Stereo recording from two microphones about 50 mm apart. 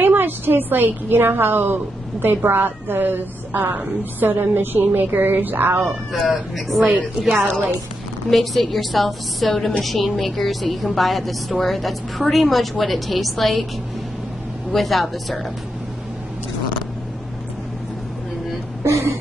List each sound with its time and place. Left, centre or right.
0.0 s a woman's voice: right
5.9 s a woman's voice: centre
14.7 s a woman's voice: centre